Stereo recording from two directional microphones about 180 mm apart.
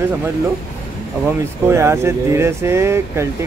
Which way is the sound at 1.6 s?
15° right (ahead or behind).